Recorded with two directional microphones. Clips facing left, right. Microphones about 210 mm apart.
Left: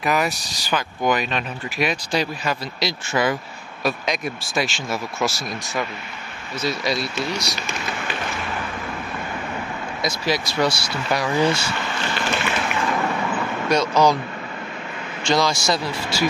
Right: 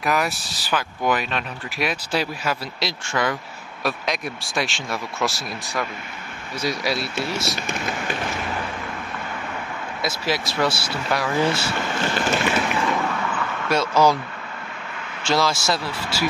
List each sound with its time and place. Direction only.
0.0 s speech: centre (ahead or behind)
6.6 s speech: 10° right (ahead or behind)
7.5 s speech: 50° right (ahead or behind)
10.0 s speech: 5° right (ahead or behind)
12.0 s a sound: 45° right (ahead or behind)
13.7 s speech: 5° right (ahead or behind)
15.2 s speech: 5° right (ahead or behind)